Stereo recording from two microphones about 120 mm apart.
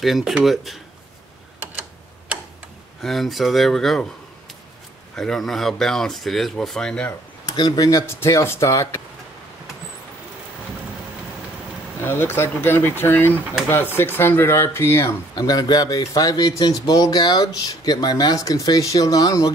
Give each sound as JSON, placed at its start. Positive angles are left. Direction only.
{"t": 0.0, "sound": "speech", "side_deg": 0}
{"t": 3.0, "sound": "speech", "side_deg": 0}
{"t": 5.1, "sound": "speech", "side_deg": 5}
{"t": 7.4, "sound": "speech", "side_deg": 35}
{"t": 12.0, "sound": "speech", "side_deg": 20}
{"t": 15.3, "sound": "speech", "side_deg": 35}